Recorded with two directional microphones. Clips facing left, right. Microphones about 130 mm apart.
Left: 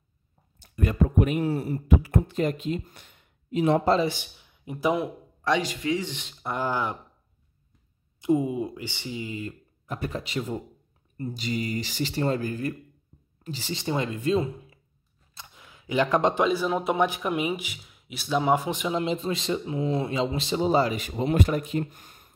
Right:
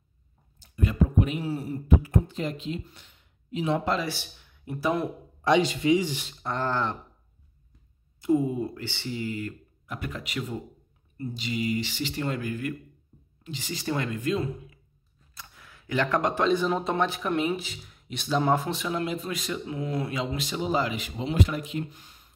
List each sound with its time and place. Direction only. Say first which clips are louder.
0.6 s speech: left 1 dB; 55° left (ahead or behind)
3.8 s speech: left 6 dB; 30° left (ahead or behind)
4.1 s speech: right 1 dB; 20° left (ahead or behind)
5.4 s a man's voice: right 3 dB; 20° right (ahead or behind)
5.9 s speech: right 4 dB; 5° right (ahead or behind)
6.4 s speech: left 1 dB; 10° left (ahead or behind)
8.2 s speech: even; 15° left (ahead or behind)
9.8 s speech: left 4 dB; 30° left (ahead or behind)
11.1 s speech: left 1 dB; 40° left (ahead or behind)
15.3 s a sound: left 1 dB; 20° left (ahead or behind)
16.4 s speech: even; 5° left (ahead or behind); by 22.3 s 50° left (ahead or behind)